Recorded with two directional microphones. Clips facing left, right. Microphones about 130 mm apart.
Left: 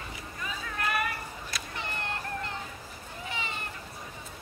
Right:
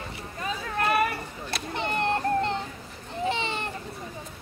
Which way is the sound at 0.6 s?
35° right (ahead or behind).